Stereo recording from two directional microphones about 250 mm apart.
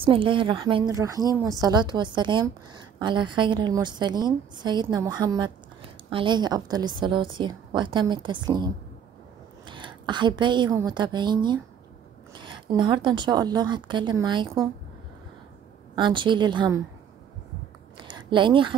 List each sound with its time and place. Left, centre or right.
0.0 s a woman's voice: right
16.0 s speech: centre
17.9 s a sound: centre